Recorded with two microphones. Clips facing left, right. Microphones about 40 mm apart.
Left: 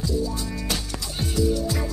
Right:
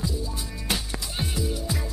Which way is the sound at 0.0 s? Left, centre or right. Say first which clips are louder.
Left 5 dB; centre.